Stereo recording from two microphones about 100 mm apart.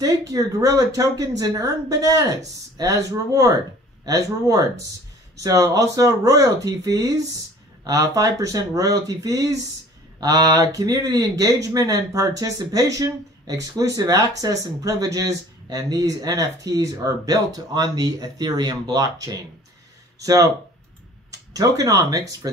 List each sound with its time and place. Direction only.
0.0 s speech: 35° right (ahead or behind)
21.3 s speech: 40° right (ahead or behind)